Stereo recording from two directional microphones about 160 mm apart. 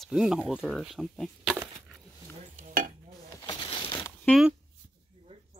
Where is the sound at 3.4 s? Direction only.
30° left (ahead or behind).